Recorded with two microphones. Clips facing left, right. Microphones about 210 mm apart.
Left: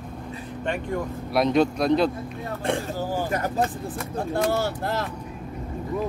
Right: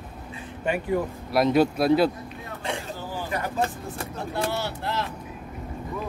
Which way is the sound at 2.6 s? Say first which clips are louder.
Left 6 dB; 50° left (ahead or behind).